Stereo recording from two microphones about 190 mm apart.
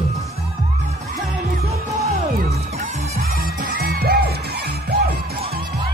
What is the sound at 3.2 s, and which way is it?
Music, 50° right (ahead or behind).